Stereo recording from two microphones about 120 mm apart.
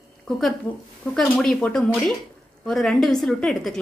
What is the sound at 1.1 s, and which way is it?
A woman's voice, 5° left (ahead or behind).